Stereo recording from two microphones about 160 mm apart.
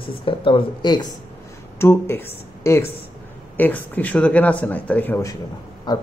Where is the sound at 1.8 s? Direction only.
15° left (ahead or behind).